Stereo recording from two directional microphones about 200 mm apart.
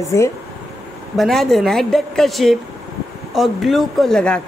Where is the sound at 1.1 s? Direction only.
Centre (ahead or behind).